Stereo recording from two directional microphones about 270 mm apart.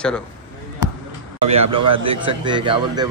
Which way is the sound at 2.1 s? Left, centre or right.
Centre.